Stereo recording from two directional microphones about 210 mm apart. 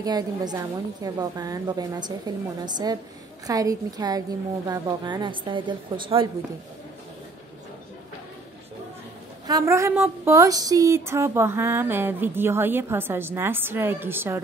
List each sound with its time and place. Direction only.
0.0 s a woman's voice: 20° right (ahead or behind)
9.5 s speech: 15° right (ahead or behind)